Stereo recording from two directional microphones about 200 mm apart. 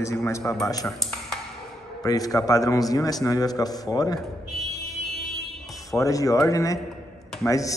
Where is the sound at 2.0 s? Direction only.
20° left (ahead or behind).